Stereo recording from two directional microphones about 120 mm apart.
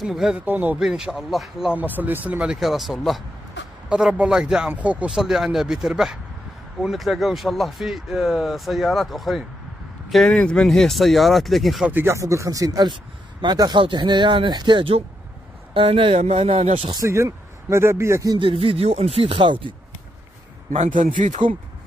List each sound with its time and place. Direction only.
0.0 s speech: 5° right (ahead or behind)
0.5 s speech: 15° right (ahead or behind)
0.7 s speech: 5° right (ahead or behind)
11.9 s speech: 20° right (ahead or behind); by 16.9 s 60° right (ahead or behind)
17.0 s speech: 25° right (ahead or behind)
18.4 s speech: 50° right (ahead or behind)
20.7 s a man's voice: 80° right